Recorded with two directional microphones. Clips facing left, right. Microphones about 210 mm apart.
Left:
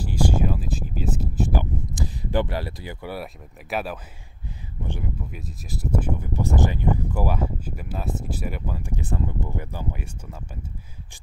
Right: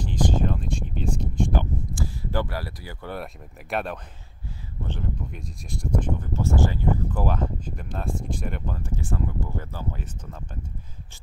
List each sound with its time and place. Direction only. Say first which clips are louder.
0.0 s a sound: left 1 dB; 10° left (ahead or behind)
2.0 s speech: left 4 dB; 20° left (ahead or behind)
3.7 s a man's voice: even; 5° left (ahead or behind)